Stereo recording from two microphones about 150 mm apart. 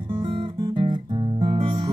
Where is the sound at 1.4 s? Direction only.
35° right (ahead or behind).